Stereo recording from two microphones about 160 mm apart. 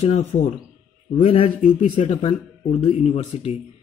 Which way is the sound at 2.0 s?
45° left (ahead or behind).